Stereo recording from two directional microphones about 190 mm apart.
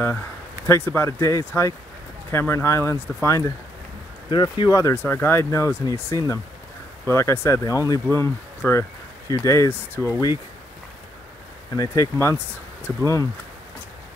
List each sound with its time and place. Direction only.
0.7 s speech: 10° left (ahead or behind)
11.7 s speech: 20° left (ahead or behind)